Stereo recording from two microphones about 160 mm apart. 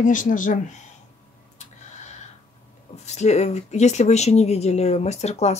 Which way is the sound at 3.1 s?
45° left (ahead or behind).